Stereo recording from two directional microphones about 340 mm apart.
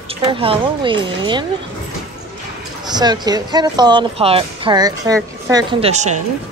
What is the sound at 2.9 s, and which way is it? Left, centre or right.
Speech, centre.